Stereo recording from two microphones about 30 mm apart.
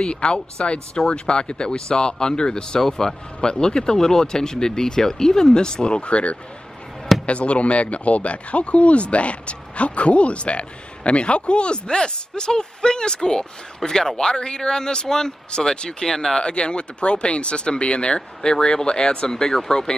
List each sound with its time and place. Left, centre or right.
0.1 s speech: left
2.8 s a man's voice: centre
3.3 s speech: left
5.9 s speech: left; by 16.3 s centre
16.3 s speech: left